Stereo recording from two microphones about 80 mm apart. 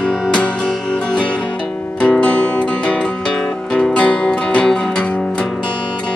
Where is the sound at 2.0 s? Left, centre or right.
Centre.